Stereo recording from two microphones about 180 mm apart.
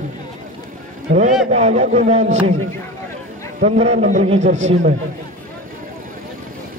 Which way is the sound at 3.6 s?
40° right (ahead or behind).